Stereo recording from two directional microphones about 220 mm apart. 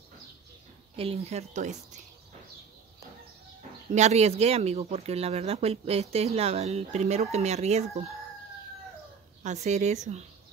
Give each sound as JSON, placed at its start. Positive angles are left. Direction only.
{"t": 0.9, "sound": "a woman's voice", "side_deg": -25}
{"t": 3.9, "sound": "speech", "side_deg": -30}
{"t": 9.4, "sound": "a woman's voice", "side_deg": -30}